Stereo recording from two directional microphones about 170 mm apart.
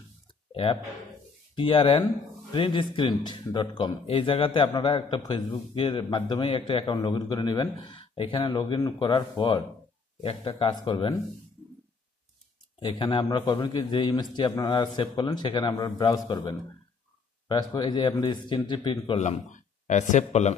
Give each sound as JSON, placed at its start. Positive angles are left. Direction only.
{"t": 0.5, "sound": "a sound", "side_deg": 35}
{"t": 1.5, "sound": "speech", "side_deg": 30}
{"t": 12.8, "sound": "speech", "side_deg": 30}
{"t": 19.1, "sound": "speech", "side_deg": 45}